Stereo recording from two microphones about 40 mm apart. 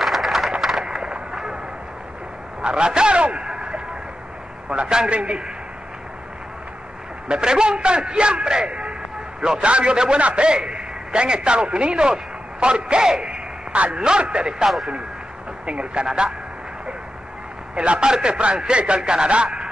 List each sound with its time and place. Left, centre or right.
0.0 s a sound: centre
0.5 s wood: centre
2.6 s a man's voice: right
7.2 s a man's voice: centre
13.9 s a man's voice: right
15.6 s a man's voice: right
17.7 s a man's voice: right